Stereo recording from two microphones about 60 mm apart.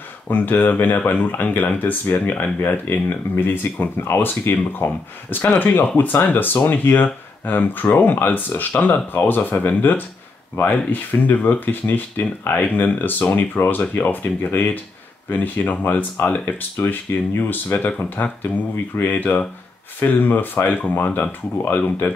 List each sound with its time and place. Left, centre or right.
0.3 s speech: left